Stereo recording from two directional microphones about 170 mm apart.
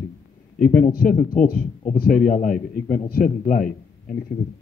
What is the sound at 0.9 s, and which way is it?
A man's voice, 60° left (ahead or behind).